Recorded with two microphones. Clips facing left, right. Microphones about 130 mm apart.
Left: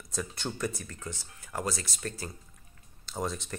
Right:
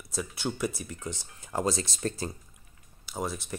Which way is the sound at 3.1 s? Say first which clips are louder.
Even; 5° right (ahead or behind).